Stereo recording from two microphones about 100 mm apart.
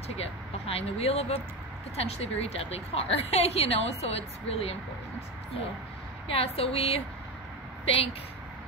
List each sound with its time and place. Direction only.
0.1 s a woman's voice: 85° left
6.2 s a woman's voice: 75° left (ahead or behind)